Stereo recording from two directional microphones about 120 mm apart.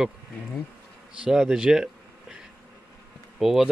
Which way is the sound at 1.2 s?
5° right (ahead or behind).